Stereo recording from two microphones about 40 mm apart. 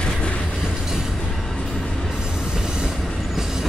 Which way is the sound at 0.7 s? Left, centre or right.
Centre.